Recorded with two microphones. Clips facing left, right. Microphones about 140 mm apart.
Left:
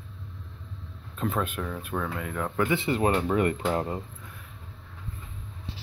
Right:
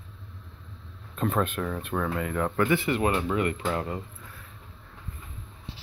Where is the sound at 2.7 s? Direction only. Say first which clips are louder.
Left 3 dB; 30° left (ahead or behind).